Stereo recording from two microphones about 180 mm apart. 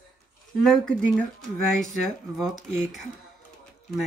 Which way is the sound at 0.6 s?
5° left (ahead or behind).